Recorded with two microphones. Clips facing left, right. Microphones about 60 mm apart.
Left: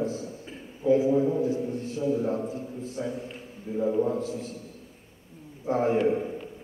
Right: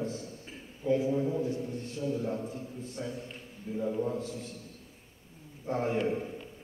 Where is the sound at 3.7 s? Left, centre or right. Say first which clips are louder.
Left 7 dB; centre.